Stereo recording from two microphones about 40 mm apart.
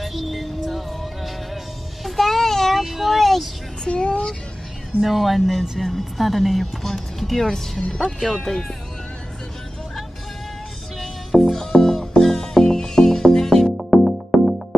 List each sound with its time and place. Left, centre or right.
0.0 s music: centre
2.0 s child singing: centre
3.8 s a child's voice: left
5.0 s speech: centre
11.0 s music: centre
14.0 s music: centre